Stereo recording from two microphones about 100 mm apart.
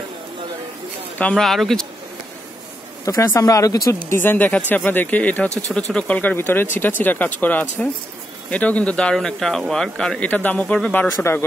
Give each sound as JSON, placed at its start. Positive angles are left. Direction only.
{"t": 1.1, "sound": "speech", "side_deg": 15}
{"t": 1.4, "sound": "speech", "side_deg": 5}
{"t": 3.1, "sound": "speech", "side_deg": 35}
{"t": 4.1, "sound": "speech", "side_deg": 20}